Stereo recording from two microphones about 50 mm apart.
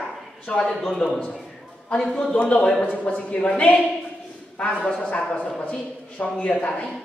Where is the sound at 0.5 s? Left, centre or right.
Left.